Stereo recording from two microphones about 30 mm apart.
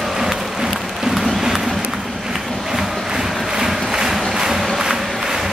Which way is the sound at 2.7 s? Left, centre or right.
Centre.